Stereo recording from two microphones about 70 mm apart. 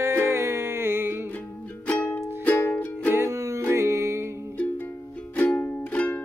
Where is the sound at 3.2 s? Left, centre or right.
Right.